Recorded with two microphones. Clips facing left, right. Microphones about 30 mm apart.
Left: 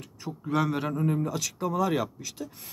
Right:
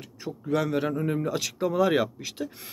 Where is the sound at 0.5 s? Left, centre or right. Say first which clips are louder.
Right 2 dB; centre.